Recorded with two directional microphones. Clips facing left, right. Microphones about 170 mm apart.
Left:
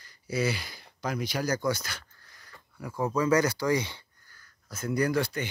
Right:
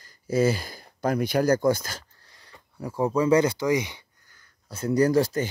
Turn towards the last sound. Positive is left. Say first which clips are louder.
# right 6 dB
turn(degrees=-40)  # may be behind; listen again after turning